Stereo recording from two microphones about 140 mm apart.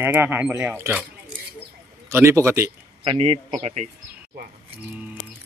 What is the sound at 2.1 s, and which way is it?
Speech, 20° right (ahead or behind).